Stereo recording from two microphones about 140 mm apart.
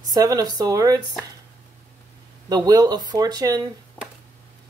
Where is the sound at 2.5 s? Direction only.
30° right (ahead or behind).